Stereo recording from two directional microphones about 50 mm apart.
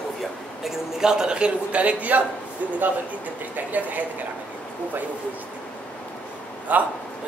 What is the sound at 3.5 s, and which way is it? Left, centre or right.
Speech, right.